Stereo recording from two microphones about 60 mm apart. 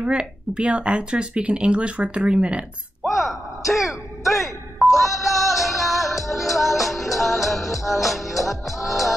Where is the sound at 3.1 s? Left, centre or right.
Centre.